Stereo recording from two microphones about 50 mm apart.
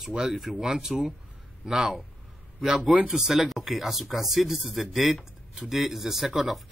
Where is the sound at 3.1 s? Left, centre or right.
Centre.